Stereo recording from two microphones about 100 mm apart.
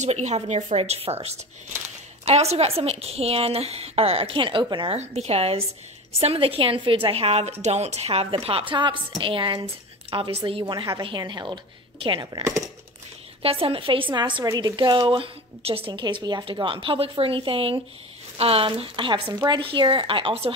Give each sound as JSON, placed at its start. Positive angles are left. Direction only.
{"t": 0.1, "sound": "a woman's voice", "side_deg": -90}
{"t": 4.9, "sound": "a woman's voice", "side_deg": -90}
{"t": 6.1, "sound": "a woman's voice", "side_deg": -75}
{"t": 8.7, "sound": "a woman's voice", "side_deg": -55}
{"t": 10.6, "sound": "speech", "side_deg": -45}
{"t": 13.4, "sound": "a woman's voice", "side_deg": -70}
{"t": 15.9, "sound": "speech", "side_deg": -50}
{"t": 16.5, "sound": "a woman's voice", "side_deg": -60}